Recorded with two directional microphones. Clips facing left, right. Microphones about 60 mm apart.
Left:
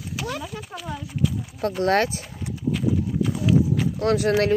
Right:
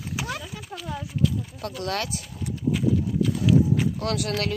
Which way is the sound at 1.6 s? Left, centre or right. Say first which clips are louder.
Left 10 dB; left.